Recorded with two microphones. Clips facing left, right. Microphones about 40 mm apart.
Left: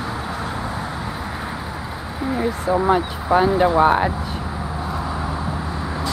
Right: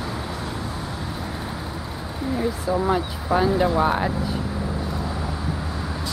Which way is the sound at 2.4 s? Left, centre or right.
Left.